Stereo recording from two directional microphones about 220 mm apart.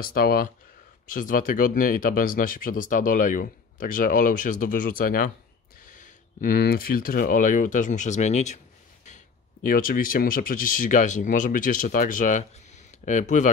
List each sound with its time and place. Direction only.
0.1 s speech: 40° left (ahead or behind)